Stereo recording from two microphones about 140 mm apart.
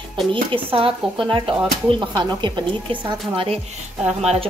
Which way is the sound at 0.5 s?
40° right (ahead or behind).